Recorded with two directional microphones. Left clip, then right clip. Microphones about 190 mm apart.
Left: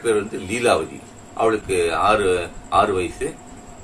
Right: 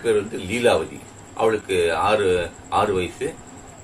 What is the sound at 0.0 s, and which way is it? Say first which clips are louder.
Speech: even; 10° left (ahead or behind).